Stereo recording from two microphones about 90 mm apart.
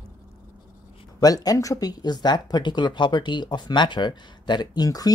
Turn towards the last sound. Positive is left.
turn(degrees=45)  # may be behind; listen again after turning